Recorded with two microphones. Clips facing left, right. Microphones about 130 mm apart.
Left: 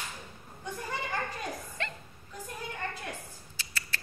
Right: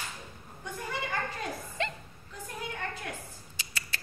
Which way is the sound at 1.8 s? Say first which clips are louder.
Right 6 dB; 20° right (ahead or behind).